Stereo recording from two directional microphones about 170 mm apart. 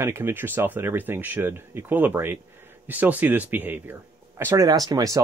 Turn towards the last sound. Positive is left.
turn(degrees=-20)  # may be behind; listen again after turning